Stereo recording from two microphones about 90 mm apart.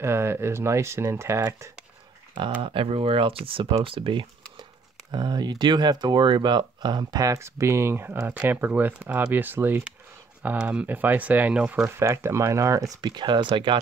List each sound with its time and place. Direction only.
0.0 s speech: 30° right (ahead or behind)
2.6 s speech: 80° right; by 4.6 s 65° right (ahead or behind)
5.1 s speech: 50° right (ahead or behind)
7.2 s speech: 35° right (ahead or behind); by 11.9 s 15° right (ahead or behind)
11.9 s speech: 30° right (ahead or behind); by 13.7 s 65° right (ahead or behind)